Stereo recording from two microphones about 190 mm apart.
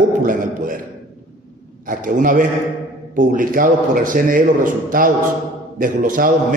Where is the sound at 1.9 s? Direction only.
45° right (ahead or behind).